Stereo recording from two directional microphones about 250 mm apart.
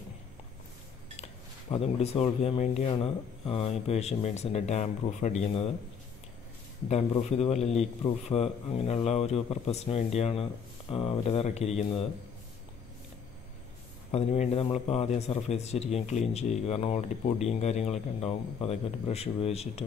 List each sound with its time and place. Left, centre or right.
1.7 s a man's voice: left
6.9 s a man's voice: left
14.1 s a man's voice: left